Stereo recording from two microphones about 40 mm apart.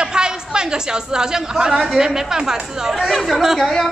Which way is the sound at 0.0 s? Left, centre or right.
Centre.